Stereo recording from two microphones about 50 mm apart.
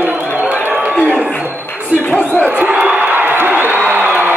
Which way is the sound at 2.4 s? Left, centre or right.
Right.